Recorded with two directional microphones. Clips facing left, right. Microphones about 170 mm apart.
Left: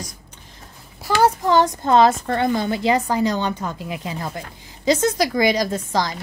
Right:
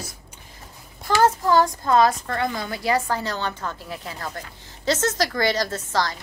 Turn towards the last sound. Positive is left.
turn(degrees=15)  # may be behind; listen again after turning